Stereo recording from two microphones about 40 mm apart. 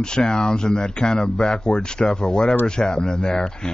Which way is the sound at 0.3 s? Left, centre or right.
Centre.